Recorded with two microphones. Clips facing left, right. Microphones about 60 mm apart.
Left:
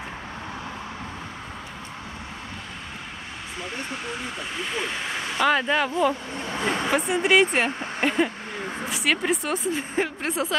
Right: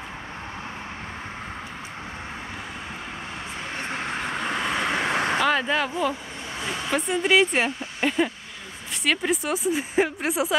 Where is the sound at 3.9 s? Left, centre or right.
Right.